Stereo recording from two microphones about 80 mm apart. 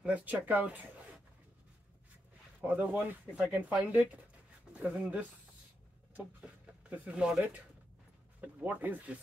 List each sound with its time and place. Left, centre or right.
0.0 s speech: centre
2.6 s speech: right